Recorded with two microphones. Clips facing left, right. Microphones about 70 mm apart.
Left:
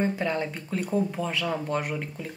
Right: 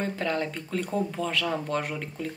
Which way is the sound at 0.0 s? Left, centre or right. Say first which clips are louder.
Left 2 dB; centre.